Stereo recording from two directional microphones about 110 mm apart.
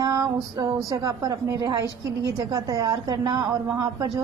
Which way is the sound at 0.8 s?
30° right (ahead or behind).